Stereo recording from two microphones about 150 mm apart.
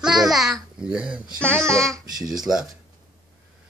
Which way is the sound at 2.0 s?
25° right (ahead or behind).